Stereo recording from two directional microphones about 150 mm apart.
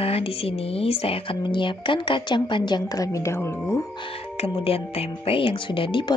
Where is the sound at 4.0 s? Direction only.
40° left (ahead or behind).